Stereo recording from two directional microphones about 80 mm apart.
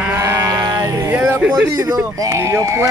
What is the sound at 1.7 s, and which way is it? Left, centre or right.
Speech, right.